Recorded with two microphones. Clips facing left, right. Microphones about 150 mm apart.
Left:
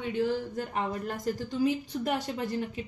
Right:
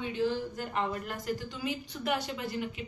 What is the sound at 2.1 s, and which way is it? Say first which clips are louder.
Speech: left 1 dB; 35° left (ahead or behind).